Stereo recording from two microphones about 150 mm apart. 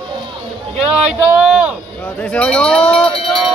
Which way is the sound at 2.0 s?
10° left (ahead or behind).